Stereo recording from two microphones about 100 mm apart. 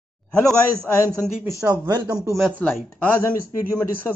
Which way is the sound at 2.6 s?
15° left (ahead or behind).